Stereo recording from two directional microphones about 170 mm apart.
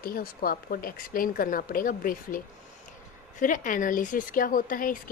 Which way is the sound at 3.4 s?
50° left (ahead or behind).